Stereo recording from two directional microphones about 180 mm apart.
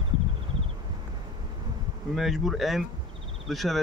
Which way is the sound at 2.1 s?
Centre (ahead or behind).